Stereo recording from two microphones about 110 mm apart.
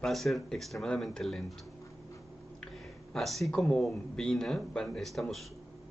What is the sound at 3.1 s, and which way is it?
Speech, centre (ahead or behind).